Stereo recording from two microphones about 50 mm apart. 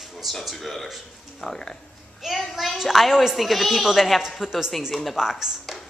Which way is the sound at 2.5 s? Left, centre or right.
Centre.